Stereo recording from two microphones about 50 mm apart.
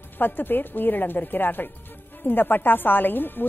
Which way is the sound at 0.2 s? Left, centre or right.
Left.